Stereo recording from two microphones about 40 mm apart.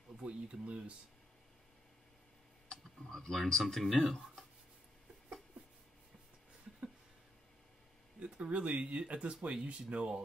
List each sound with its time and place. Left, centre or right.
0.2 s speech: right
3.1 s speech: centre
8.2 s speech: right